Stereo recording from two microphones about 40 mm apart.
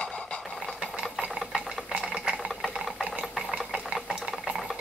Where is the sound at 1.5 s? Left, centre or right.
Right.